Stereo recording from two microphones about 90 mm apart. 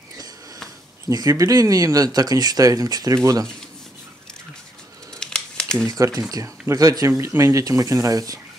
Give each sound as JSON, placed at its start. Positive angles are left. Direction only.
{"t": 1.0, "sound": "speech", "side_deg": -40}
{"t": 5.2, "sound": "crumpling", "side_deg": 10}
{"t": 5.9, "sound": "speech", "side_deg": -40}